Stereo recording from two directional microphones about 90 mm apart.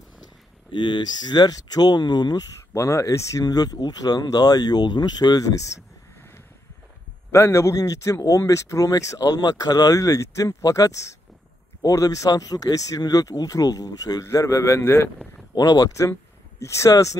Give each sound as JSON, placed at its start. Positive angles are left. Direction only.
{"t": 0.7, "sound": "speech", "side_deg": 60}
{"t": 2.7, "sound": "speech", "side_deg": 35}
{"t": 7.2, "sound": "speech", "side_deg": 35}
{"t": 15.5, "sound": "speech", "side_deg": 45}
{"t": 16.1, "sound": "speech", "side_deg": 30}